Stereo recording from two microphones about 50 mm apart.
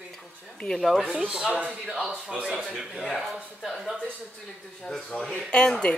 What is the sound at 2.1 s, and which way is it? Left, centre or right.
Speech, centre.